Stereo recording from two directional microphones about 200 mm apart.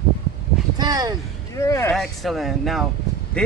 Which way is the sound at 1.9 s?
Centre (ahead or behind).